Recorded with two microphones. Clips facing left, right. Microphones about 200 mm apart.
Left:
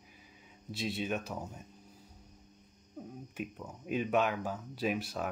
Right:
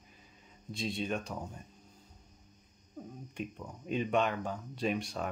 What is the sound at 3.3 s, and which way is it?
Speech, 5° left (ahead or behind).